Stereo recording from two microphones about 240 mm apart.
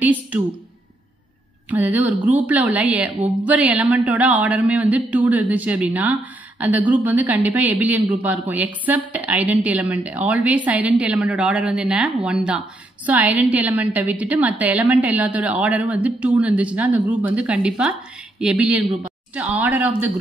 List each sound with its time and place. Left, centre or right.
0.0 s a woman's voice: centre
1.7 s a woman's voice: centre